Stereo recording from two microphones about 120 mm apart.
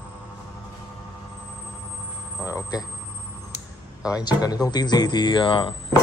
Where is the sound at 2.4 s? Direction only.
25° left (ahead or behind).